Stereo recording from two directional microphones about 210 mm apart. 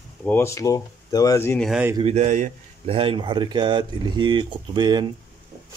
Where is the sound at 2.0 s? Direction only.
30° right (ahead or behind).